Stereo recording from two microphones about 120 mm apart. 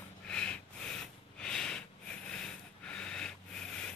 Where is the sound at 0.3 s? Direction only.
10° left (ahead or behind).